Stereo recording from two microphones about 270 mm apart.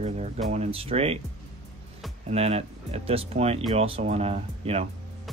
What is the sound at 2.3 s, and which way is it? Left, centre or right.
Speech, right.